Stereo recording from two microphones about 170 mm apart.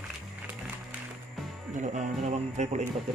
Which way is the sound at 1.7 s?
45° right (ahead or behind).